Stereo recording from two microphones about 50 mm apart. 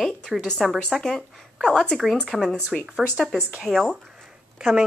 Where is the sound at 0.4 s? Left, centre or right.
Centre.